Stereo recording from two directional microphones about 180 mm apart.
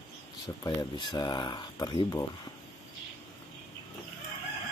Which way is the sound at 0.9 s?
25° left (ahead or behind).